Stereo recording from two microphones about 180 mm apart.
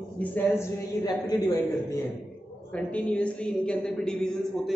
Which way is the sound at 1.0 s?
20° left (ahead or behind).